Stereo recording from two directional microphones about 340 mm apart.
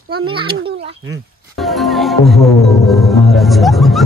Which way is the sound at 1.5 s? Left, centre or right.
Centre.